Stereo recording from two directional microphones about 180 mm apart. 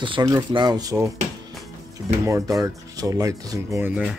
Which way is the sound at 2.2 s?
15° right (ahead or behind).